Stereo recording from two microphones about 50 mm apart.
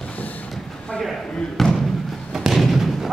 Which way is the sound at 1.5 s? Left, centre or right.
Centre.